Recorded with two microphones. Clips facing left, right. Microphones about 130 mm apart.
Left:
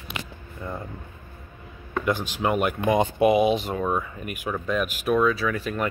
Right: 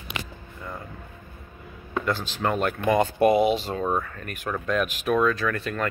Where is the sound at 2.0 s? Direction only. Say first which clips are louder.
Left 2 dB; 15° left (ahead or behind).